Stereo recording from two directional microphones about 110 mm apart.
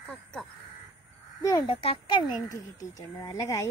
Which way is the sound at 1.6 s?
60° left (ahead or behind).